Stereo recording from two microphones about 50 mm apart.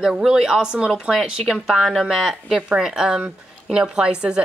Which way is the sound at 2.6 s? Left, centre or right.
Centre.